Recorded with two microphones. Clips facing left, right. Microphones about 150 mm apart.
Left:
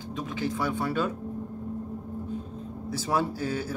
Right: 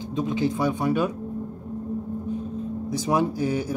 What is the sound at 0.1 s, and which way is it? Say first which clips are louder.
Speech: right 7 dB; 20° right (ahead or behind).